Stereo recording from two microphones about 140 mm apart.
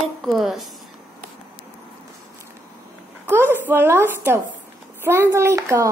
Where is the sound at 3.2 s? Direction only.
15° right (ahead or behind).